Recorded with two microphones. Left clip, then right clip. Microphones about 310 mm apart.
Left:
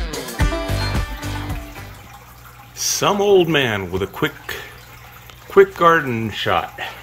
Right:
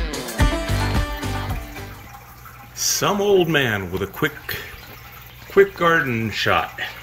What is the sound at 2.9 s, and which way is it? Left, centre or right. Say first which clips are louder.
Speech: left 3 dB; centre.